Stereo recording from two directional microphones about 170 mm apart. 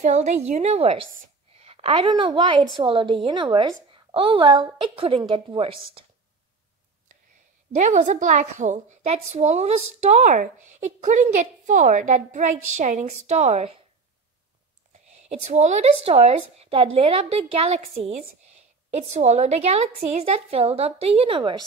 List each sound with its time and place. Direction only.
0.0 s a woman's voice: 45° right (ahead or behind)
7.7 s a woman's voice: 45° right (ahead or behind)
15.2 s a woman's voice: 40° right (ahead or behind)